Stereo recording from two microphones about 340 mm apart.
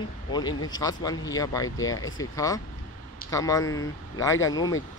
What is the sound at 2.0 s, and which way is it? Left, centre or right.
Speech, left.